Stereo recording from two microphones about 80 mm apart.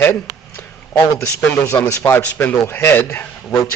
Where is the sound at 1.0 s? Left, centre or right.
Left.